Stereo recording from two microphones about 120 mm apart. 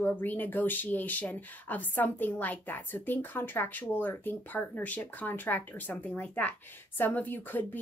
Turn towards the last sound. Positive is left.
turn(degrees=15)  # may be behind; listen again after turning